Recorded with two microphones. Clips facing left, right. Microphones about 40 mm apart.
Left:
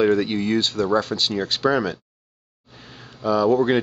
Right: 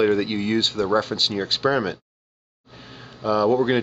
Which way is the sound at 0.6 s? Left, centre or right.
Right.